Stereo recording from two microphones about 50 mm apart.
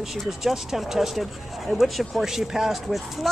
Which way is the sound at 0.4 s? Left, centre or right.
Centre.